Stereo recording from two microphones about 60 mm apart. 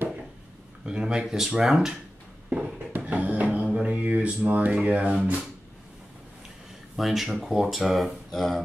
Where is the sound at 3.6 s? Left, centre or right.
Centre.